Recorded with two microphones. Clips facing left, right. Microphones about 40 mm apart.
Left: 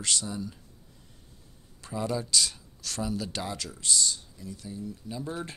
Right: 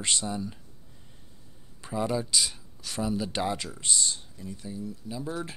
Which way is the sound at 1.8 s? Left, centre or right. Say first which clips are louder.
Right 2 dB; centre.